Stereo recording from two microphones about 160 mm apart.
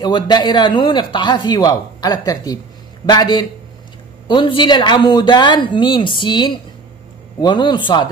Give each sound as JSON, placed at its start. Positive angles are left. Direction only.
{"t": 0.0, "sound": "speech", "side_deg": 25}